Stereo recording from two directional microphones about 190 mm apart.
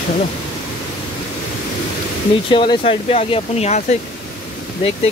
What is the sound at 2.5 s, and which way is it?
Speech, 25° left (ahead or behind).